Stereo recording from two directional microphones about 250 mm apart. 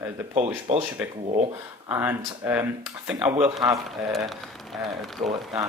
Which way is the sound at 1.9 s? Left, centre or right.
Centre.